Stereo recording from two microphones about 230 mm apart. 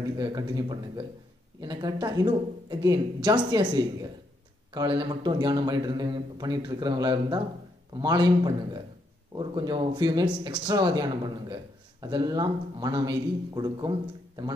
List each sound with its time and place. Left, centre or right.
0.2 s speech: centre